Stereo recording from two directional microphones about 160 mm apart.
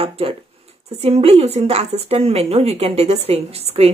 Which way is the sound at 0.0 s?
35° right (ahead or behind).